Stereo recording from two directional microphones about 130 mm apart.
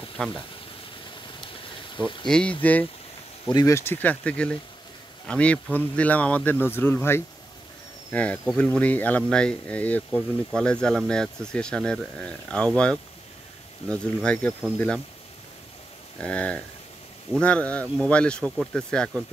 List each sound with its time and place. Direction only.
0.2 s speech: 10° left (ahead or behind)
2.0 s speech: 35° left (ahead or behind)
2.2 s speech: 5° left (ahead or behind)
3.5 s speech: 25° left (ahead or behind); by 15.0 s 5° left (ahead or behind)
16.2 s speech: 10° left (ahead or behind)